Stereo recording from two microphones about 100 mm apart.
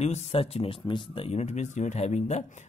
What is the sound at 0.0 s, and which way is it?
Speech, 85° left.